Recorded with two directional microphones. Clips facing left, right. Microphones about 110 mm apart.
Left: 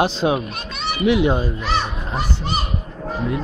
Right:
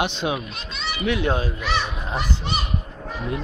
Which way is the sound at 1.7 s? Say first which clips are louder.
Left 1 dB; 35° left (ahead or behind).